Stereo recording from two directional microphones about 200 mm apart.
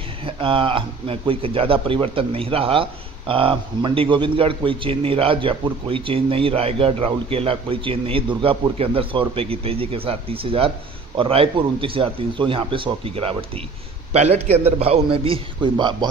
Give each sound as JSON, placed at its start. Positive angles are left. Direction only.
{"t": 0.2, "sound": "speech", "side_deg": -25}